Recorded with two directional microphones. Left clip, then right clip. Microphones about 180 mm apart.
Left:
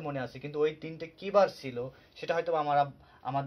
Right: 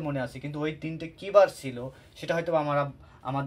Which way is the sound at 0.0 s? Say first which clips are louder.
Right 4 dB; 35° left (ahead or behind).